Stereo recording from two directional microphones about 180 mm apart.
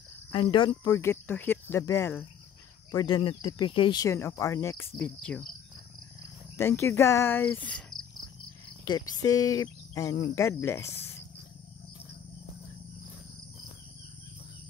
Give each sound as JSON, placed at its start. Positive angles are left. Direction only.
{"t": 0.3, "sound": "speech", "side_deg": 30}
{"t": 0.9, "sound": "speech", "side_deg": 10}
{"t": 6.5, "sound": "speech", "side_deg": 15}
{"t": 8.8, "sound": "speech", "side_deg": 20}